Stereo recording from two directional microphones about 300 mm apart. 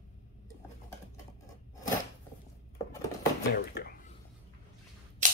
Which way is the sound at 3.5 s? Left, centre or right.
Left.